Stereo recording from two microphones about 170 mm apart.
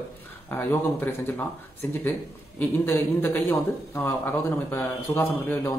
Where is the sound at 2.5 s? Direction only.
10° left (ahead or behind).